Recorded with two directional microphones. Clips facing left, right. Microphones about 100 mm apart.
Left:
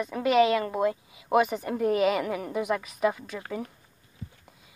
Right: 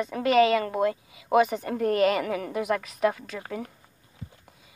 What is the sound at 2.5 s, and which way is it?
A woman's voice, 75° right (ahead or behind).